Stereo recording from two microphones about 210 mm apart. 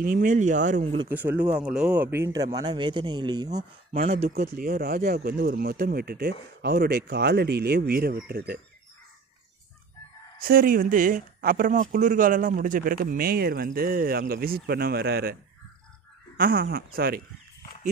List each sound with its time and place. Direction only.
0.0 s speech: 40° right (ahead or behind)
1.0 s speech: 10° right (ahead or behind)
3.9 s speech: 30° right (ahead or behind)
4.6 s speech: 45° right (ahead or behind)
10.4 s speech: 45° right (ahead or behind)
16.3 s speech: 45° right (ahead or behind)